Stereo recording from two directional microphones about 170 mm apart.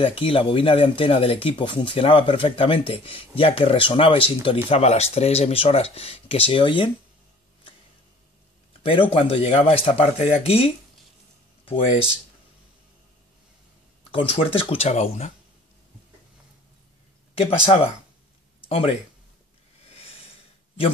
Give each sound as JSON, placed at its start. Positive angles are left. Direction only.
{"t": 0.0, "sound": "speech", "side_deg": 30}
{"t": 8.8, "sound": "speech", "side_deg": 30}
{"t": 14.1, "sound": "speech", "side_deg": 35}
{"t": 17.4, "sound": "speech", "side_deg": 35}